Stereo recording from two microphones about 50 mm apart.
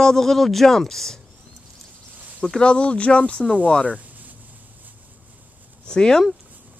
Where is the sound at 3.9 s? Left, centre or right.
Right.